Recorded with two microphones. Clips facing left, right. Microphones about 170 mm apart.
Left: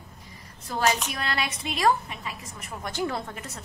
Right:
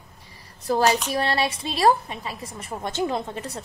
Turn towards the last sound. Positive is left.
turn(degrees=-30)  # may be behind; listen again after turning